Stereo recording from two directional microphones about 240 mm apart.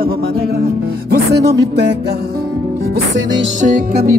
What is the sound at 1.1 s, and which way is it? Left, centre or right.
Speech, right.